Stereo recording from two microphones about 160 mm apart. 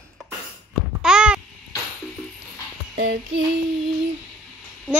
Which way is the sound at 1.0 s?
5° right (ahead or behind).